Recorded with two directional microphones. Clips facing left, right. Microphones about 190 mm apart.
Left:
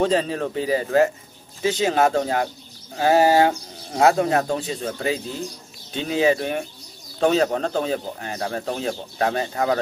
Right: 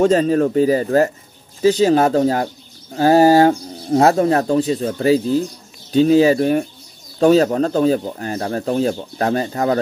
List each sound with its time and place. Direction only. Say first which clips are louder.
0.0 s speech: right 7 dB; 45° right (ahead or behind)